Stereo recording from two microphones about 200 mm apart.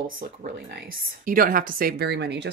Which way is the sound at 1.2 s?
45° right (ahead or behind).